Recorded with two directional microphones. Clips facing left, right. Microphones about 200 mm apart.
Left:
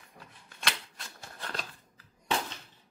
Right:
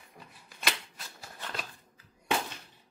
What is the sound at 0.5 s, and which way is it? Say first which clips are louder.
Shuffling cards: right 2 dB; 5° right (ahead or behind).